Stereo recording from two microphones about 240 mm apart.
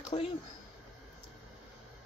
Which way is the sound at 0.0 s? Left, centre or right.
Left.